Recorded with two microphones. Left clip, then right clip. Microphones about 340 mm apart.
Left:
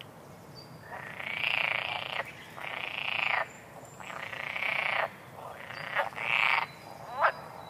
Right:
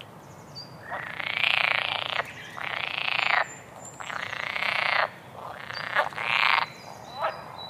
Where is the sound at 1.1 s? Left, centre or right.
Centre.